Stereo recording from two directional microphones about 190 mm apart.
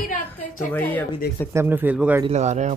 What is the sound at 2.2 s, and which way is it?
Speech, 35° right (ahead or behind).